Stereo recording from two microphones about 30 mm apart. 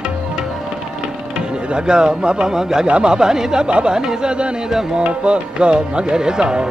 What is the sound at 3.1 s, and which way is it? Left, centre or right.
Speech, right.